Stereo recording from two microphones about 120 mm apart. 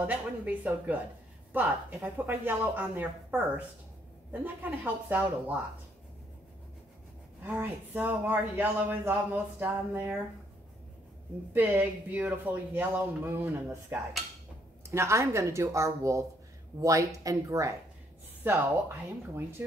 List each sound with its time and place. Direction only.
0.0 s a man's voice: 15° right (ahead or behind)
7.4 s a man's voice: 15° right (ahead or behind)
11.5 s a man's voice: 15° right (ahead or behind)